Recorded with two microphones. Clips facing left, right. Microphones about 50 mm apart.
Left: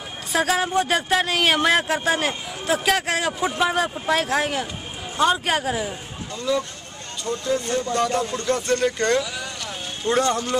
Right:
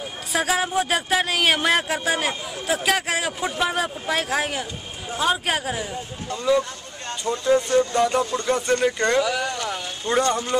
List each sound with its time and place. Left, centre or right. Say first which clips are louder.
0.3 s a man's voice: left 2 dB; centre
6.3 s a man's voice: right 3 dB; centre
9.2 s vehicle: right 7 dB; right
10.0 s a man's voice: left 1 dB; centre